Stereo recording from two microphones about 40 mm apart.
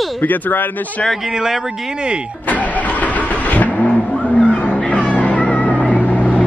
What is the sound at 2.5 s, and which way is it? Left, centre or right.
Vehicle, left.